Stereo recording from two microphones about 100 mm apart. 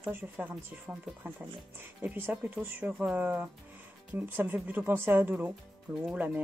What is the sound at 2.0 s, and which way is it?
Speech, 20° right (ahead or behind).